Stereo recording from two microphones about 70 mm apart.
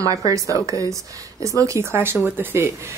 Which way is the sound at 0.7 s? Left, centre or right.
Right.